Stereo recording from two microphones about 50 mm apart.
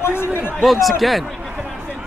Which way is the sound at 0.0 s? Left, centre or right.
Left.